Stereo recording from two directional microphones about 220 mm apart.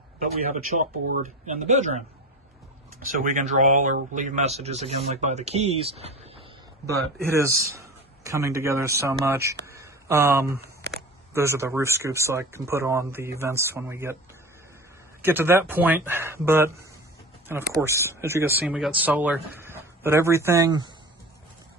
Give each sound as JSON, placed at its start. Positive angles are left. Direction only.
{"t": 0.2, "sound": "speech", "side_deg": -35}
{"t": 7.4, "sound": "speech", "side_deg": -15}
{"t": 9.7, "sound": "a sound", "side_deg": -10}
{"t": 11.3, "sound": "speech", "side_deg": -10}
{"t": 15.2, "sound": "speech", "side_deg": -10}